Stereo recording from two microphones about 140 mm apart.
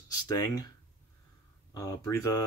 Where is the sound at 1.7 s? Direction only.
25° left (ahead or behind).